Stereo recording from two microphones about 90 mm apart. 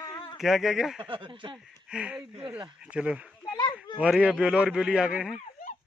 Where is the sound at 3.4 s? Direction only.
60° left (ahead or behind).